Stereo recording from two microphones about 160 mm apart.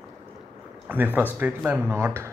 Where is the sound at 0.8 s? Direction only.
10° right (ahead or behind).